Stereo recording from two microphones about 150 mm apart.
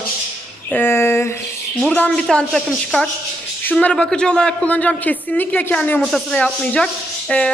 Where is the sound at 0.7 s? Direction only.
15° left (ahead or behind).